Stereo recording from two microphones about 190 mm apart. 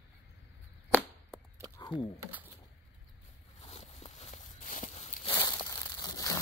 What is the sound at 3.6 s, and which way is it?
Walk, 35° left (ahead or behind).